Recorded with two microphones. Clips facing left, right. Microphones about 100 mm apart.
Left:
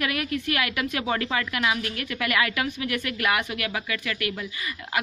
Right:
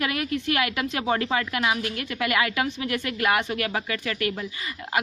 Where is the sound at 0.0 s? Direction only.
30° right (ahead or behind).